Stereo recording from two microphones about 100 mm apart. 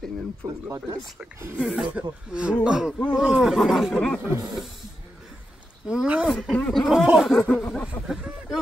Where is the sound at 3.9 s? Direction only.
15° left (ahead or behind).